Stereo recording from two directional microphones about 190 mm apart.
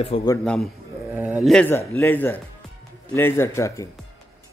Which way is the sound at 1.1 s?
5° right (ahead or behind).